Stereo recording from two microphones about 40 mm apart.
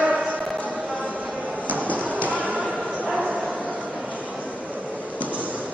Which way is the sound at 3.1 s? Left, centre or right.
Right.